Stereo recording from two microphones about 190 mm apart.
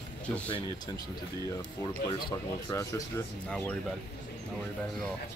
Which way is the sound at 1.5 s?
25° left (ahead or behind).